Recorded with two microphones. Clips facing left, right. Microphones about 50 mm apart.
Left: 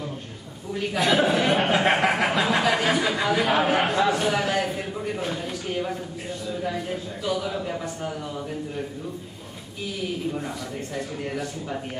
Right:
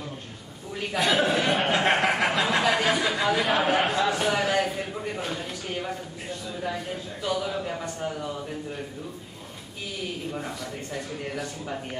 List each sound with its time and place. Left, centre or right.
0.7 s chuckle: centre
6.5 s a man's voice: centre
10.3 s a man's voice: centre